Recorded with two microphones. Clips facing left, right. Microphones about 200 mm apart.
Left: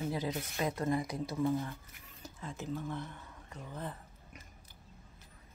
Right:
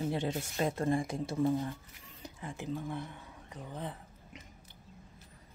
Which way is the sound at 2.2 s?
15° right (ahead or behind).